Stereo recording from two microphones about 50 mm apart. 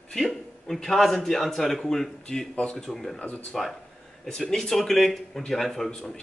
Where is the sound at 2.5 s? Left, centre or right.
Centre.